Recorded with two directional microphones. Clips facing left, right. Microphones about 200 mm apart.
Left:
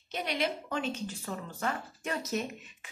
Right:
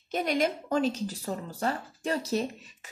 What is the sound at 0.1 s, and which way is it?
Speech, 45° right (ahead or behind).